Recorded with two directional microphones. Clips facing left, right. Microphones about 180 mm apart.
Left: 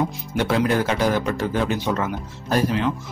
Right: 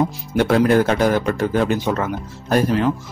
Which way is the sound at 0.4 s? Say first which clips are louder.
Right 5 dB; 50° right (ahead or behind).